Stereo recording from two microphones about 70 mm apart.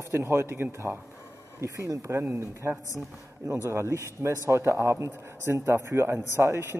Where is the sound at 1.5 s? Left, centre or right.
Right.